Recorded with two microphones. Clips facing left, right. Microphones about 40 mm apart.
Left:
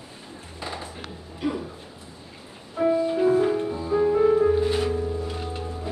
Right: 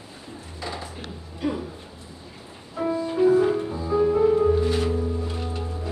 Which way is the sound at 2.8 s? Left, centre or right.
Centre.